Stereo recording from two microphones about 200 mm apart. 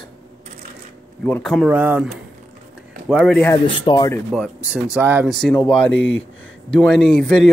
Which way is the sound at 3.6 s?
20° left (ahead or behind).